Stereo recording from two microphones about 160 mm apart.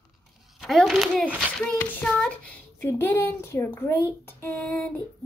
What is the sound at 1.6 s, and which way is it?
Child singing, 5° left (ahead or behind).